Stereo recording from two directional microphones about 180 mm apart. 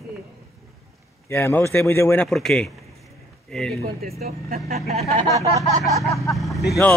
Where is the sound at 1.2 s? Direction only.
10° left (ahead or behind).